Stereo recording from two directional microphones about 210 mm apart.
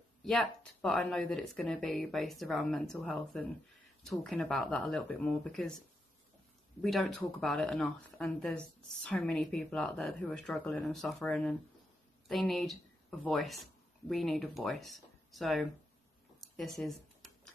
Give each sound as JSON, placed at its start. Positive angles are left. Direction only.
{"t": 0.2, "sound": "speech", "side_deg": 0}
{"t": 6.8, "sound": "speech", "side_deg": 0}
{"t": 16.3, "sound": "a sound", "side_deg": 0}